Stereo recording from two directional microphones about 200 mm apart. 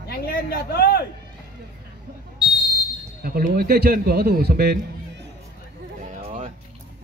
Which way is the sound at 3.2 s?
50° right (ahead or behind).